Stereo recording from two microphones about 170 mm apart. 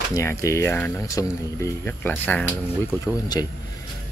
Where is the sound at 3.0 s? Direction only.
20° left (ahead or behind).